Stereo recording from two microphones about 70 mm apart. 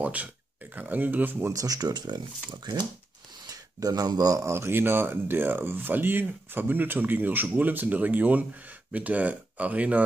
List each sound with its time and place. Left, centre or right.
0.0 s speech: right
1.5 s speech: right
3.4 s speech: right
4.5 s speech: right